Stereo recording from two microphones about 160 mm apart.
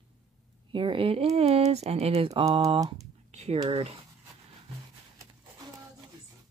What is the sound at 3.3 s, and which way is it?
Speech, 40° right (ahead or behind).